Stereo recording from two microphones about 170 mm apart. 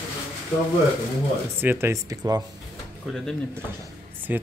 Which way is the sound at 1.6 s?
15° right (ahead or behind).